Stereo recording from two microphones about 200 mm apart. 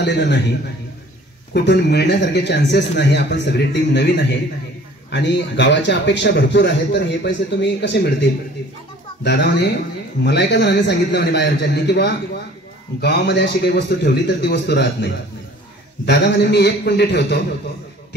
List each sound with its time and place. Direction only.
0.0 s a man's voice: 60° left (ahead or behind)
1.5 s a man's voice: 55° left (ahead or behind)
9.2 s a man's voice: 55° left (ahead or behind)
16.1 s a man's voice: 60° left (ahead or behind)